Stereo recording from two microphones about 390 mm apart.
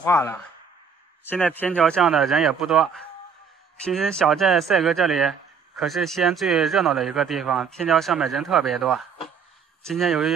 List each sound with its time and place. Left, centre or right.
0.0 s speech: centre